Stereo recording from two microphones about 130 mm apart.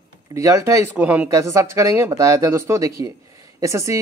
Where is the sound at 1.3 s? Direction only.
25° right (ahead or behind).